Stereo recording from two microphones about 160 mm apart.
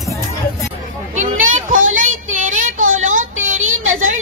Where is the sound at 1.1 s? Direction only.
50° right (ahead or behind).